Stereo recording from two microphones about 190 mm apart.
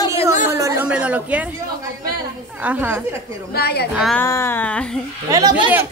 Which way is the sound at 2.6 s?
10° right (ahead or behind).